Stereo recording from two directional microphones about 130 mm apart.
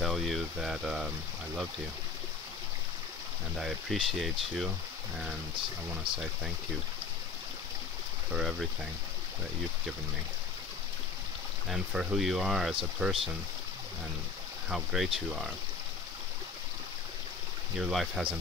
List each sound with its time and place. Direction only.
0.0 s speech: centre (ahead or behind)
3.5 s speech: centre (ahead or behind)
6.1 s speech: 40° right (ahead or behind)
8.3 s speech: 5° right (ahead or behind)
11.7 s speech: 5° right (ahead or behind)
14.7 s speech: 5° right (ahead or behind)
17.7 s speech: 5° right (ahead or behind)